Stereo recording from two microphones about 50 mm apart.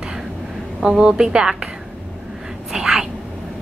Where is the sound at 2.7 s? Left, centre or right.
Centre.